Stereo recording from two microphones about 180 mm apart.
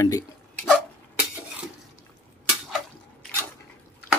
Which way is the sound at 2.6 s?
Centre (ahead or behind).